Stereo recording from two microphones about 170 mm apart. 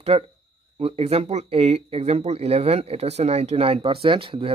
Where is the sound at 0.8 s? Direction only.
35° right (ahead or behind).